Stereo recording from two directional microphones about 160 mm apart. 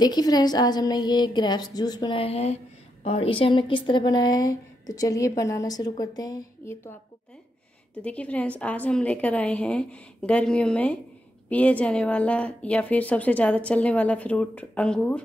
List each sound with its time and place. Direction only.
0.0 s a woman's voice: 25° left (ahead or behind)
2.2 s a woman's voice: 40° left (ahead or behind); by 15.2 s 5° left (ahead or behind)